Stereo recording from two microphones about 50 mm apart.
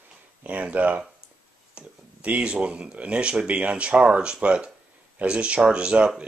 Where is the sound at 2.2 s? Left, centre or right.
Right.